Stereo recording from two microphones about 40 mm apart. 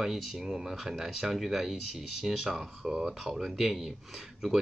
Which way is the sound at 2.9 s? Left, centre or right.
Centre.